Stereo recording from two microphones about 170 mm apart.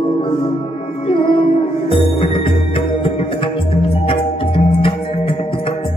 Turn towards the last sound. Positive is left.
turn(degrees=30)  # may be behind; listen again after turning